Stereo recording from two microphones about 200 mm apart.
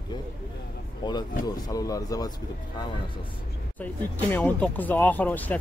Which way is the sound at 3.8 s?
10° left (ahead or behind).